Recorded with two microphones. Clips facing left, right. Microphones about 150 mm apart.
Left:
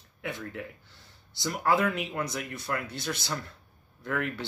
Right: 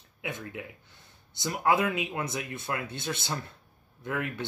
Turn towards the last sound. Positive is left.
turn(degrees=-20)  # may be behind; listen again after turning